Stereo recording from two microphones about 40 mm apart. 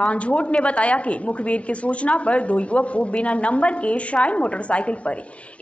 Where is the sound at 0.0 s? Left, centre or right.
Left.